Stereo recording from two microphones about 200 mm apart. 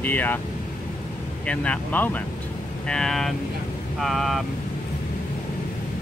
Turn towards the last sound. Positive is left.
turn(degrees=0)  # may be behind; listen again after turning